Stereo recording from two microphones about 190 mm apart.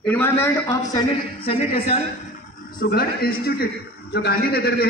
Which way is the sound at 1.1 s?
30° left (ahead or behind).